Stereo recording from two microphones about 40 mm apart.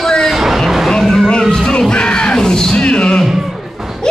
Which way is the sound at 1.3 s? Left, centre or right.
Centre.